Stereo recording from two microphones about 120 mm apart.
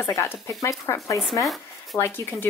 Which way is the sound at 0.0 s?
20° left (ahead or behind).